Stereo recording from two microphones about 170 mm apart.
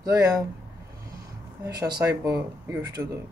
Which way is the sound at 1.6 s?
20° right (ahead or behind).